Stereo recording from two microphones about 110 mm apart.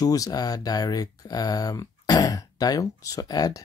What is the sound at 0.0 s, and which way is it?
Speech, 35° left (ahead or behind).